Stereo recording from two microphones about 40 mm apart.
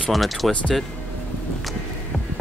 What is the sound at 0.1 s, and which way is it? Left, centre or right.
Speech, centre.